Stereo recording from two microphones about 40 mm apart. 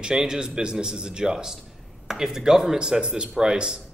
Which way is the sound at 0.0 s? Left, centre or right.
Centre.